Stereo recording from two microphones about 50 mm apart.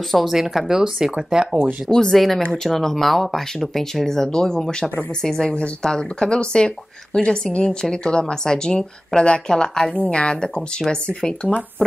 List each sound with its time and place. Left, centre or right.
0.1 s speech: centre
1.9 s a woman's voice: centre